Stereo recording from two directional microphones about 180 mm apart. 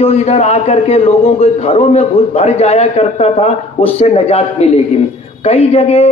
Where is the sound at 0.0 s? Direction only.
35° left (ahead or behind).